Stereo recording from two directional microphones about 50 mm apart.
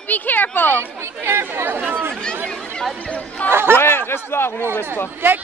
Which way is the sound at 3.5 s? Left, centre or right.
Right.